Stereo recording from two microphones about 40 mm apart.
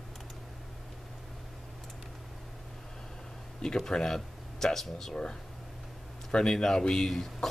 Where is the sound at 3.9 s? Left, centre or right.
Centre.